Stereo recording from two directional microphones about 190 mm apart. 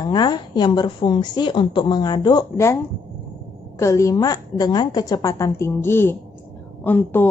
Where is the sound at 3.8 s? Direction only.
15° left (ahead or behind).